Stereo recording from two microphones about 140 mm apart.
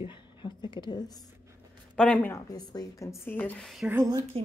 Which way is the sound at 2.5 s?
30° left (ahead or behind).